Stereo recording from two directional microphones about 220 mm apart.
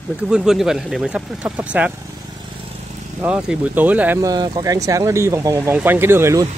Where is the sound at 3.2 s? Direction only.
5° right (ahead or behind).